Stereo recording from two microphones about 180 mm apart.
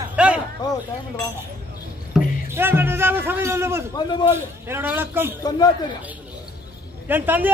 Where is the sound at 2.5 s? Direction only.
10° right (ahead or behind).